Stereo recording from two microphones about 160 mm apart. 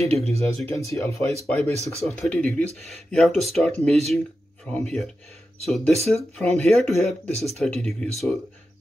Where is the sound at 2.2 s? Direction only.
5° left (ahead or behind).